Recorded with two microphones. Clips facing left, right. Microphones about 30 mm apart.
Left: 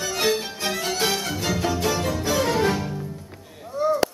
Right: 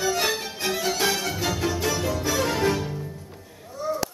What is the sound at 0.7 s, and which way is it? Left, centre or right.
Music, centre.